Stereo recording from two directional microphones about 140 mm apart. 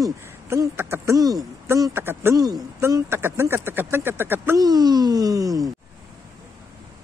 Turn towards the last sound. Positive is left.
turn(degrees=-25)  # may be behind; listen again after turning